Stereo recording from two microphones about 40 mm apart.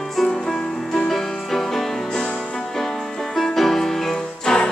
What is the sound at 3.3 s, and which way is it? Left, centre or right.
Music, centre.